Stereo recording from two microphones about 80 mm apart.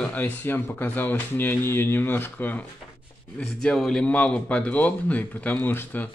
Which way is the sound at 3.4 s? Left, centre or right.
Centre.